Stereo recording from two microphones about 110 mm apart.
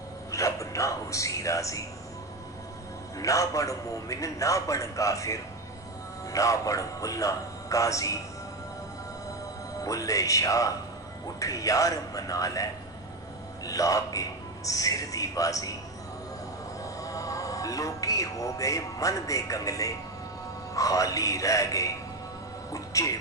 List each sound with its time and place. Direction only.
0.3 s a sound: 30° left (ahead or behind)
3.2 s a man's voice: 30° left (ahead or behind)
9.8 s a man's voice: 30° left (ahead or behind)
13.7 s a man's voice: 30° left (ahead or behind)
16.8 s a man's voice: 30° left (ahead or behind)
22.7 s music: 30° left (ahead or behind)